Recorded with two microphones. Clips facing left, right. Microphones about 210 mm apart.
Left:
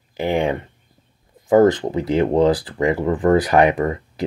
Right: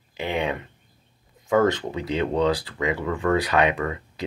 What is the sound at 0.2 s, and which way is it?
Speech, 30° left (ahead or behind).